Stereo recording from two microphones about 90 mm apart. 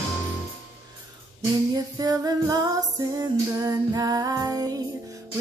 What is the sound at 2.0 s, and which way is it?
Music, 45° right (ahead or behind).